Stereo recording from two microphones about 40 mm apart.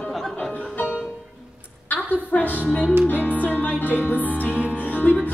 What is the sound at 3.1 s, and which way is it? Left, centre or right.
Music, left.